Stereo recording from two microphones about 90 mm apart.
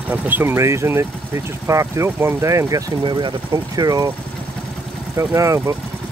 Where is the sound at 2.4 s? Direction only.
35° right (ahead or behind).